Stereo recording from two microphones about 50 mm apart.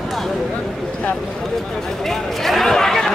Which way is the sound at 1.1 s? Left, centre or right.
Centre.